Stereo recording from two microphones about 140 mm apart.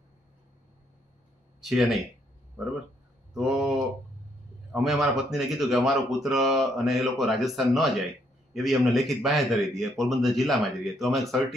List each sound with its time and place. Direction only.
1.6 s speech: centre (ahead or behind)
3.3 s speech: centre (ahead or behind)
4.7 s speech: centre (ahead or behind)